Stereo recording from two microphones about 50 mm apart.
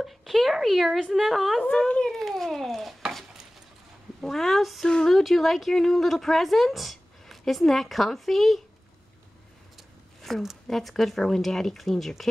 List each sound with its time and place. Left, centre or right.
0.0 s speech: centre
1.9 s speech: left
2.1 s speech: centre
4.2 s speech: centre
4.8 s speech: centre
5.1 s speech: centre
9.8 s a sound: centre
10.7 s speech: centre